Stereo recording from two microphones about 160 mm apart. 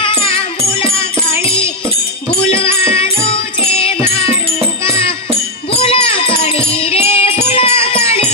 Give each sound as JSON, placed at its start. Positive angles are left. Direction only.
{"t": 0.2, "sound": "music", "side_deg": 35}
{"t": 2.4, "sound": "music", "side_deg": 35}
{"t": 5.8, "sound": "music", "side_deg": 35}